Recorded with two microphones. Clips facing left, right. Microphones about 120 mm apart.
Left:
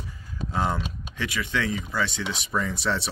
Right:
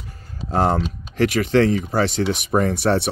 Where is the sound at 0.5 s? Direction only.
75° right (ahead or behind).